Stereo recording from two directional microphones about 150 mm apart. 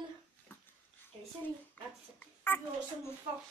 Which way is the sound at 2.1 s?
15° left (ahead or behind).